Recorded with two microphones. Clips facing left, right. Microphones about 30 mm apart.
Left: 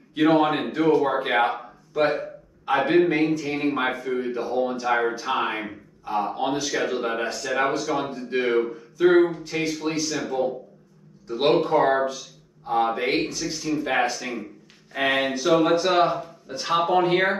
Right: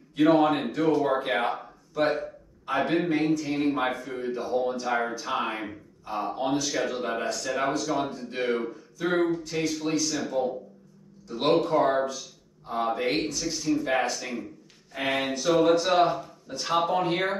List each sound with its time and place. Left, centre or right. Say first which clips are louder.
0.3 s speech: left 1 dB; left
1.3 s speech: left 5 dB; left
2.0 s a man's voice: left 3 dB; left
3.0 s speech: left 5 dB; left
3.6 s speech: left 3 dB; left
3.9 s speech: left 5 dB; left
11.2 s speech: left 3 dB; left
13.2 s speech: left 2 dB; centre
13.7 s speech: left 2 dB; left
14.0 s speech: left 3 dB; centre
16.7 s speech: left 5 dB; left